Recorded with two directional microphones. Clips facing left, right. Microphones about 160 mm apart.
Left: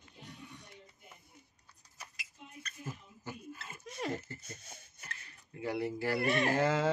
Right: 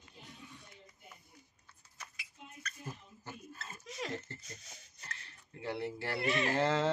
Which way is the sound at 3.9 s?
55° left (ahead or behind).